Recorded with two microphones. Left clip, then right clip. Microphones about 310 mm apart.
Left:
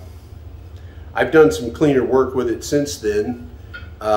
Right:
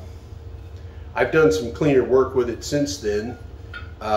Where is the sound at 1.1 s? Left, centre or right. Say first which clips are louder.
Left 4 dB; centre.